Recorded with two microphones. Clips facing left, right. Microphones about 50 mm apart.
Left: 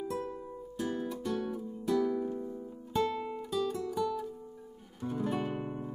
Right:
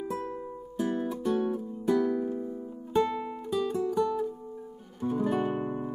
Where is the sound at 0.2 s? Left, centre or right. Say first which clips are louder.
Right 3 dB; centre.